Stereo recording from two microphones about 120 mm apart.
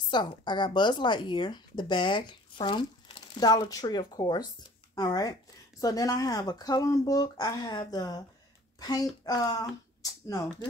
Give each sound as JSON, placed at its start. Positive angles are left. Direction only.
{"t": 0.1, "sound": "speech", "side_deg": 40}
{"t": 8.7, "sound": "a sound", "side_deg": 35}
{"t": 9.2, "sound": "speech", "side_deg": 35}